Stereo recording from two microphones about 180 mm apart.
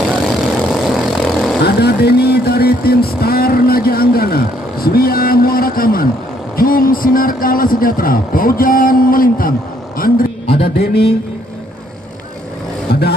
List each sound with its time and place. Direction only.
0.1 s vehicle: centre (ahead or behind)
1.6 s a man's voice: 65° left (ahead or behind)